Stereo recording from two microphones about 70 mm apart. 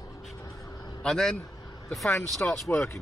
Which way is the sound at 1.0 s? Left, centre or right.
Centre.